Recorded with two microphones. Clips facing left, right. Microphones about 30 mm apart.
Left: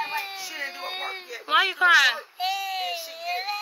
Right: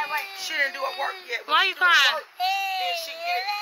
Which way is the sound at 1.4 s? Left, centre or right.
Centre.